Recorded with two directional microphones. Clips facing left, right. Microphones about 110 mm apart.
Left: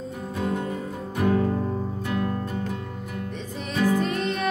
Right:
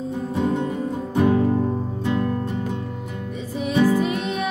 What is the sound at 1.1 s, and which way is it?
Music, 20° right (ahead or behind).